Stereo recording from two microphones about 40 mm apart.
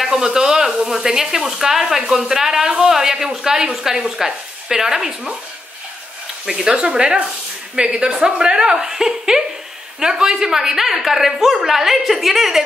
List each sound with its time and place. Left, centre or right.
0.0 s sizzle: centre
0.8 s a woman's voice: centre
6.4 s a woman's voice: centre